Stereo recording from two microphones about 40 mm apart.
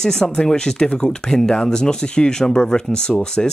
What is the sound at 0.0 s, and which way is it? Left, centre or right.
Speech, centre.